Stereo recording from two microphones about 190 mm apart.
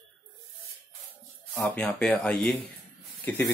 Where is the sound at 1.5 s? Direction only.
5° left (ahead or behind).